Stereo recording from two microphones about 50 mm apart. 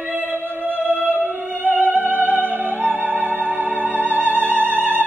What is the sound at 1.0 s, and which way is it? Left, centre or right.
Music, right.